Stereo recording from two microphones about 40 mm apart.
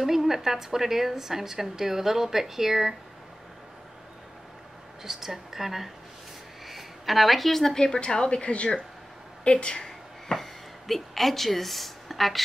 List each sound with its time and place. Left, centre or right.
0.0 s a woman's voice: centre
5.0 s a woman's voice: centre; by 9.8 s left
9.8 s a sound: centre